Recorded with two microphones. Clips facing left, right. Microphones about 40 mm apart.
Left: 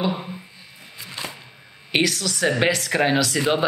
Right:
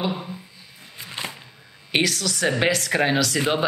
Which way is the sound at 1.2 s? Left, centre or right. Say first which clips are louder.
Right 1 dB; right.